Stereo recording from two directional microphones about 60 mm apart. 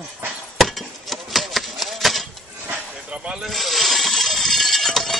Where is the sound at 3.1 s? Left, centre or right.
Centre.